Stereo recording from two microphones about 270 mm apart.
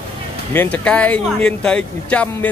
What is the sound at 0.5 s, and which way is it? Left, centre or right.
Speech, centre.